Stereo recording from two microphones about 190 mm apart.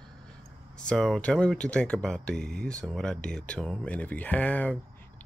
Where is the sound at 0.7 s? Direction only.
5° left (ahead or behind).